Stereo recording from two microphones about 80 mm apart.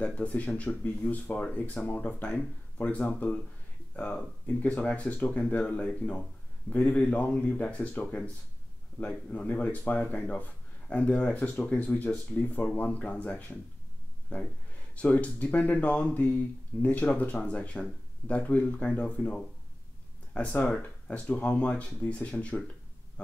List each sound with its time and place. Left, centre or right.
0.0 s speech: centre